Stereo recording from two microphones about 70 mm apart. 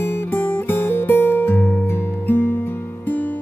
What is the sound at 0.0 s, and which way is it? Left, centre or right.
Music, left.